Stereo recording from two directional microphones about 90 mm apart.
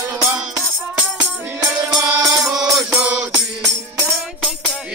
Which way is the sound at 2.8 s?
10° right (ahead or behind).